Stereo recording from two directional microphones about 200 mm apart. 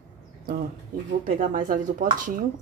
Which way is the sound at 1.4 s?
40° right (ahead or behind).